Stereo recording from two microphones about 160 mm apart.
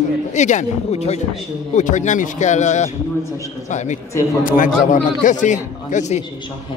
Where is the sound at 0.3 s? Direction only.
50° left (ahead or behind).